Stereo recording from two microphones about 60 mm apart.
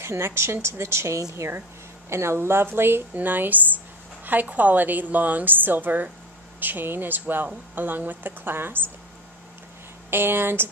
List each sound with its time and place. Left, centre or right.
0.0 s a woman's voice: right
10.1 s a woman's voice: right